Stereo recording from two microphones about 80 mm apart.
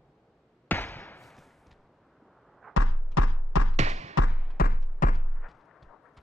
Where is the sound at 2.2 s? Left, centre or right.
Centre.